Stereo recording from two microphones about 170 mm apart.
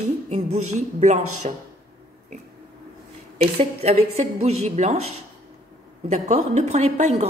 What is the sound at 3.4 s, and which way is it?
A woman's voice, 40° right (ahead or behind).